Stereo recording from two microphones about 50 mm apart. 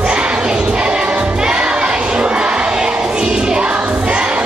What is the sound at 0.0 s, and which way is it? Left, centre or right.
Choir, right.